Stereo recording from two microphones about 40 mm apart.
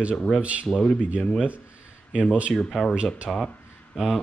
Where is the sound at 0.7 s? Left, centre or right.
Left.